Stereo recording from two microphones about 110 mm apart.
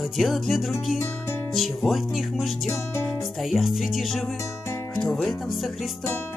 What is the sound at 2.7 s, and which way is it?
Music, 25° left (ahead or behind).